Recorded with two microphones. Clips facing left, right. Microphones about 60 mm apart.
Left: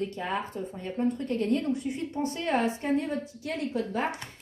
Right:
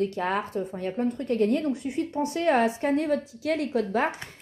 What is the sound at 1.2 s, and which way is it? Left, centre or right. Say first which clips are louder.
Speech: right 4 dB; right.